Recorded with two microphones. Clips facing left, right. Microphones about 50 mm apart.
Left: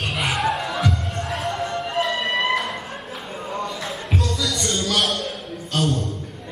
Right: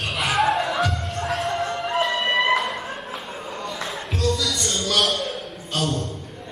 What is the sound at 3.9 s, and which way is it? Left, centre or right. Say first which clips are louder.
Music: right 5 dB; centre.